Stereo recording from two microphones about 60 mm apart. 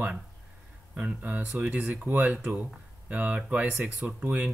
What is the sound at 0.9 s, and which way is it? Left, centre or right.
Speech, right.